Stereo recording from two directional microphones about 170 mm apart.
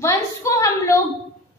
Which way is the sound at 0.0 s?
15° left (ahead or behind).